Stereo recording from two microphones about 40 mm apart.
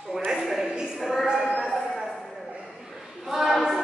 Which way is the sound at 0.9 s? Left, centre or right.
Centre.